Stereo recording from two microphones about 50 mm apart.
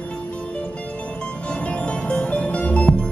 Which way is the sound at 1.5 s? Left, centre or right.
Left.